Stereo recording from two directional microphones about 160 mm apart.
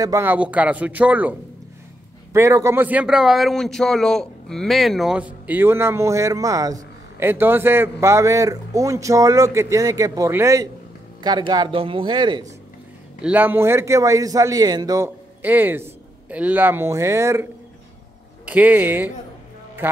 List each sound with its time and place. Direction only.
0.0 s speech: 15° right (ahead or behind)
2.3 s a man's voice: 15° right (ahead or behind)
13.2 s a man's voice: 10° right (ahead or behind)
15.4 s a man's voice: 10° right (ahead or behind)